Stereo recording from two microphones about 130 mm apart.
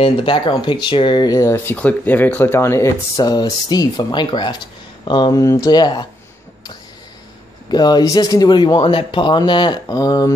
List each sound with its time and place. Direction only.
0.0 s speech: 40° left (ahead or behind)
7.7 s speech: 35° left (ahead or behind)